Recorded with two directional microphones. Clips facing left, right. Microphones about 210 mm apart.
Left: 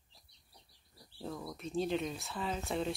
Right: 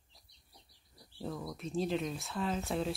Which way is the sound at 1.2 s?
Centre (ahead or behind).